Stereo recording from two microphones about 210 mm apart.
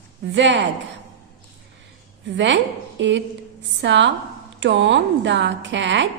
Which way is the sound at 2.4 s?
60° right (ahead or behind).